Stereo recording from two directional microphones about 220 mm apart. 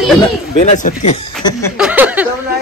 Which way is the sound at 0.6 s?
35° left (ahead or behind).